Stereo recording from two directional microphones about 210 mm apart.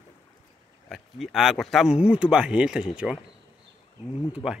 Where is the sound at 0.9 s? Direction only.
Centre (ahead or behind).